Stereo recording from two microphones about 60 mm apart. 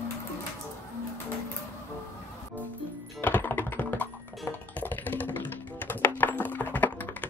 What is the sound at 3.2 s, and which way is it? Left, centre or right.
Computer keyboard, left.